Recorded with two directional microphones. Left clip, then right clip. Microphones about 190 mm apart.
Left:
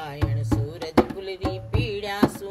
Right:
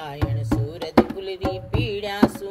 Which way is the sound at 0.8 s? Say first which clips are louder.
Right 2 dB; centre (ahead or behind).